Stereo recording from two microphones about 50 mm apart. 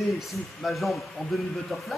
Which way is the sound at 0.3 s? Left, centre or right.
Centre.